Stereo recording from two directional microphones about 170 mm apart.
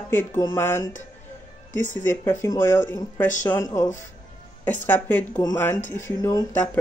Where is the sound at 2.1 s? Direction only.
15° left (ahead or behind).